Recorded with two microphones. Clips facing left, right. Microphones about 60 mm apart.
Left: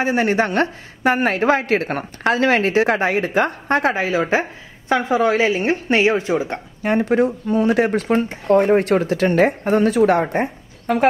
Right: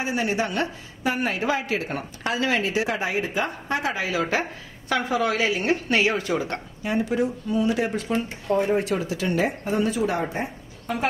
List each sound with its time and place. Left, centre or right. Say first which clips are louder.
0.0 s a woman's voice: left 7 dB; left; by 6.6 s centre
6.8 s a woman's voice: left 7 dB; left